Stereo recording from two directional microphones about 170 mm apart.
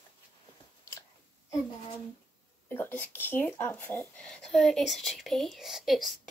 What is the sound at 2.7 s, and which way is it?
Speech, 10° left (ahead or behind).